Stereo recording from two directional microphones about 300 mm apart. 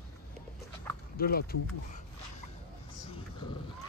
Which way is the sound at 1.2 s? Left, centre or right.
Left.